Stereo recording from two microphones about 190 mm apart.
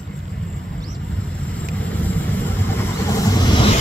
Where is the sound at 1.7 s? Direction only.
10° left (ahead or behind); by 3.8 s 25° left (ahead or behind).